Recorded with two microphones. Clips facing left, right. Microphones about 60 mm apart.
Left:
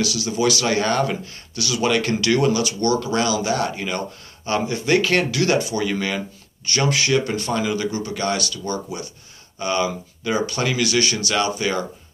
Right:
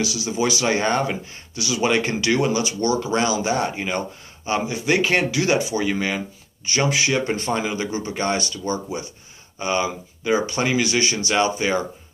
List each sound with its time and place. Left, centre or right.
0.0 s a man's voice: centre
7.2 s a man's voice: right